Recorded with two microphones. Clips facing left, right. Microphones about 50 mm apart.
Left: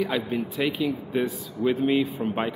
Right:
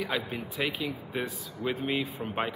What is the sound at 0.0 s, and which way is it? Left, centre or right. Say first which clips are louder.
Speech: left 6 dB; centre.